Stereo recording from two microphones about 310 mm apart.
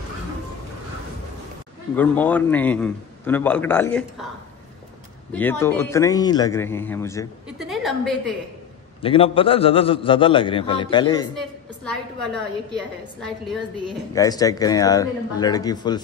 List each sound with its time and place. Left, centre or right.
2.0 s a man's voice: centre
5.3 s a man's voice: centre
9.0 s a man's voice: centre
11.3 s a man's voice: centre
14.2 s a man's voice: centre